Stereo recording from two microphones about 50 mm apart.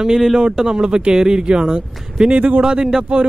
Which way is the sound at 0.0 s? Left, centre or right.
Centre.